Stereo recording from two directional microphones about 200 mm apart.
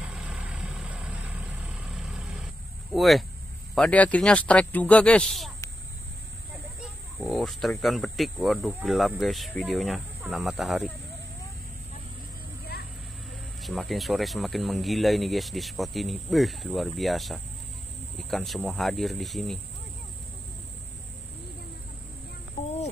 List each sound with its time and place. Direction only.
0.0 s vehicle: 5° right (ahead or behind)
2.9 s speech: centre (ahead or behind)
6.8 s speech: centre (ahead or behind)
12.7 s vehicle: 50° left (ahead or behind)
13.6 s speech: centre (ahead or behind)